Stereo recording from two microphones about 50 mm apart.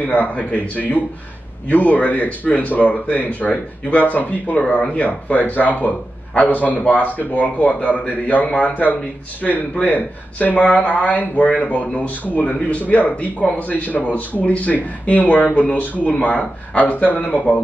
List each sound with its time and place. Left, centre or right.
0.0 s speech: left